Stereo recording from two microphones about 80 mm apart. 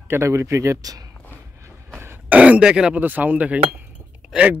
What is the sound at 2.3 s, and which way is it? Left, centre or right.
Speech, centre.